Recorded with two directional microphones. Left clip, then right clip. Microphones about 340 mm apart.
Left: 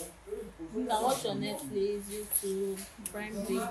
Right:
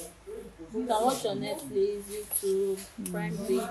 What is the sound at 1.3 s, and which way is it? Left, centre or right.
Speech, right.